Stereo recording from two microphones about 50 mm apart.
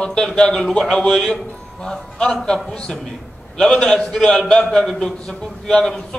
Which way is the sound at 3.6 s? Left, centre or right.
Centre.